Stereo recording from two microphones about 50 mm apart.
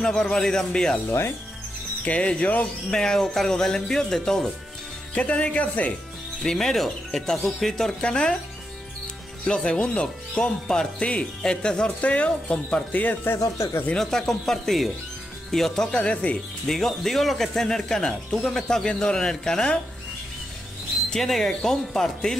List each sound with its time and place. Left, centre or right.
0.0 s a man's voice: centre
2.0 s speech: left
3.0 s a man's voice: centre
5.1 s speech: left
6.4 s a man's voice: centre
8.0 s speech: centre
9.5 s speech: centre
12.9 s speech: left
13.9 s a man's voice: centre
16.6 s a man's voice: centre
21.1 s a man's voice: centre